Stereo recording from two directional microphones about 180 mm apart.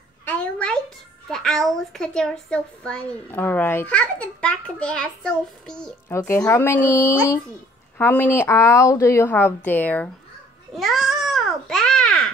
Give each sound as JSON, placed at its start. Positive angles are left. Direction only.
{"t": 0.2, "sound": "a child's voice", "side_deg": 10}
{"t": 6.0, "sound": "a woman's voice", "side_deg": 15}
{"t": 10.7, "sound": "babbling", "side_deg": 0}